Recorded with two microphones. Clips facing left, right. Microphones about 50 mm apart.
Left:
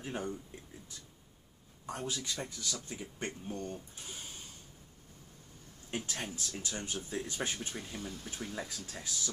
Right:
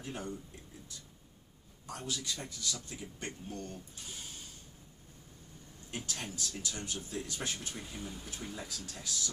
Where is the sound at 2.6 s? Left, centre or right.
Centre.